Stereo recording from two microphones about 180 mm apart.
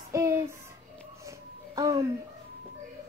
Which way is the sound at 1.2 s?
20° right (ahead or behind).